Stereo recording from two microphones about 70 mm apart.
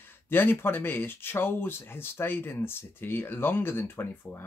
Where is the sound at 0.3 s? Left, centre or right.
Left.